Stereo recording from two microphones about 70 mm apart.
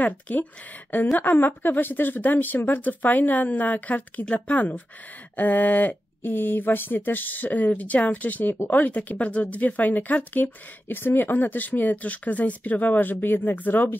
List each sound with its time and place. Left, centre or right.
0.0 s speech: left